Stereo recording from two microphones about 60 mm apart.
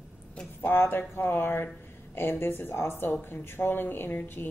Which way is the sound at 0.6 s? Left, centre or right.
Left.